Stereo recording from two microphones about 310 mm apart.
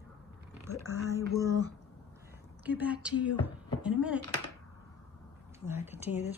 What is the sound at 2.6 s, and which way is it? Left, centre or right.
Speech, centre.